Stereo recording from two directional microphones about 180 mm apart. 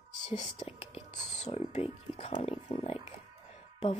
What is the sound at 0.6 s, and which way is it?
A woman's voice, 35° left (ahead or behind).